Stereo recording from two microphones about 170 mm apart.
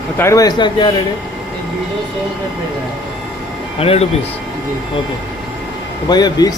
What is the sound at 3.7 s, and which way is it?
Speech, 35° left (ahead or behind).